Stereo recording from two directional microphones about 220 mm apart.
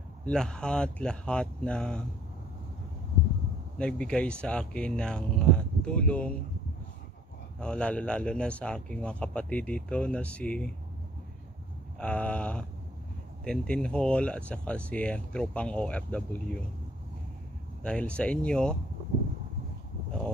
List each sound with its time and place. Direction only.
0.2 s speech: 5° left (ahead or behind)
3.7 s speech: 5° left (ahead or behind)
7.6 s speech: 5° left (ahead or behind)
12.0 s speech: 5° left (ahead or behind)
17.8 s speech: 5° left (ahead or behind)